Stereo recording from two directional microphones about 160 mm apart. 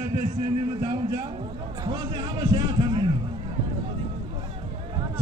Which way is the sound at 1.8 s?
25° right (ahead or behind).